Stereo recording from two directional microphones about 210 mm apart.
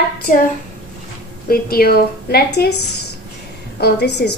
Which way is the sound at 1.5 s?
45° left (ahead or behind).